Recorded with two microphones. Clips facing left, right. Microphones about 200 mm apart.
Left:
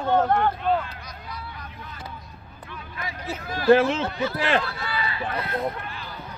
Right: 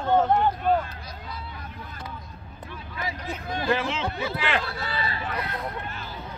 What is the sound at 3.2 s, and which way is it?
Speech, 5° left (ahead or behind).